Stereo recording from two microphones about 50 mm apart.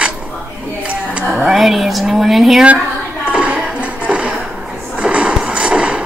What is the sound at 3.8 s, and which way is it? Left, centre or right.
Music, right.